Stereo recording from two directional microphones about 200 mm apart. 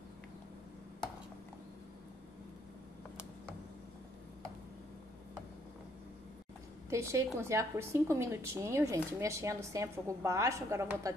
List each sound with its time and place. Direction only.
6.9 s speech: 15° right (ahead or behind)